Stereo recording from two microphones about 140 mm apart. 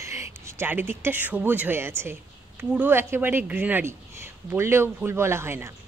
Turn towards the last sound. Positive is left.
turn(degrees=-15)  # may be behind; listen again after turning